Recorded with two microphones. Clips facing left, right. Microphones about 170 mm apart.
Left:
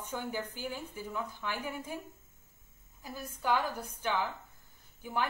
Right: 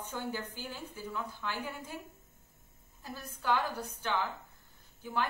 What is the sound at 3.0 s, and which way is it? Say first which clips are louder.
Speech: left 1 dB; 10° left (ahead or behind).